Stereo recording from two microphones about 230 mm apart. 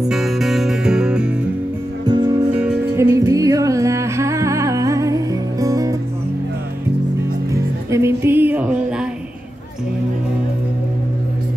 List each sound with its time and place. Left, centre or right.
0.0 s music: centre
2.0 s music: centre
2.5 s music: centre
7.5 s music: centre